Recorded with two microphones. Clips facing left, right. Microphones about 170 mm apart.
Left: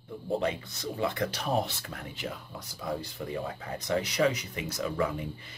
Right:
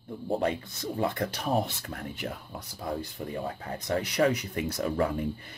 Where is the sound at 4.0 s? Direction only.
55° right (ahead or behind).